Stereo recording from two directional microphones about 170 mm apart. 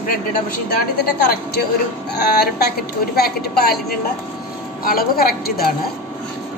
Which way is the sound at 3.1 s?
65° left (ahead or behind).